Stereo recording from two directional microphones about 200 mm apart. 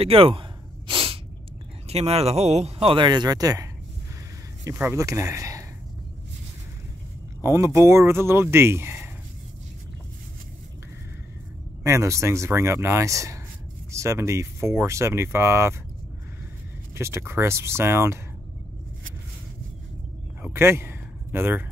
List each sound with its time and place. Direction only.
0.0 s sneeze: 30° right (ahead or behind)
1.9 s speech: 30° right (ahead or behind)
4.6 s speech: 15° right (ahead or behind)
7.4 s speech: 15° right (ahead or behind)
11.8 s speech: 15° right (ahead or behind)
16.9 s speech: 15° right (ahead or behind)
20.4 s a sound: 10° right (ahead or behind)